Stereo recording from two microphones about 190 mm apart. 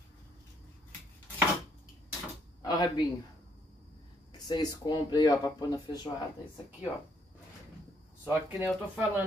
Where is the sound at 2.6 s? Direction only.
20° left (ahead or behind).